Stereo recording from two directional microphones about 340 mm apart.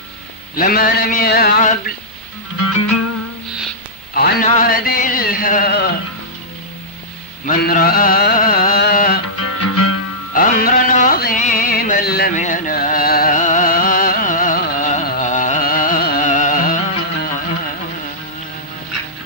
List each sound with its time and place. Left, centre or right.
0.6 s a man's voice: left
2.6 s music: left
4.1 s a sound: left
7.4 s music: left
9.4 s music: left
10.3 s music: left